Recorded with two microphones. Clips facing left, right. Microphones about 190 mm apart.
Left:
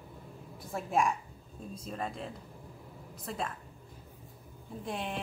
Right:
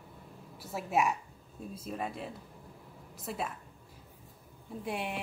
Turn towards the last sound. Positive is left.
turn(degrees=-10)  # may be behind; listen again after turning